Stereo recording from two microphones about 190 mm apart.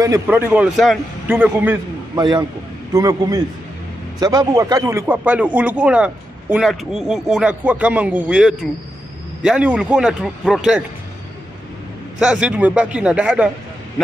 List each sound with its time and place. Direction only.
0.0 s speech: 15° right (ahead or behind)
0.5 s speech: 5° right (ahead or behind)
2.1 s a man's voice: 20° right (ahead or behind); by 10.8 s 5° right (ahead or behind)
12.2 s a man's voice: 5° right (ahead or behind)